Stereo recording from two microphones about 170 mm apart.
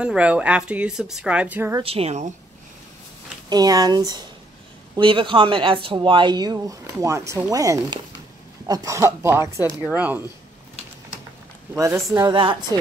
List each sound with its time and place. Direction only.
0.0 s a woman's voice: 5° right (ahead or behind)
1.8 s a woman's voice: 35° right (ahead or behind)
3.4 s a woman's voice: 20° right (ahead or behind)
11.7 s speech: 15° right (ahead or behind)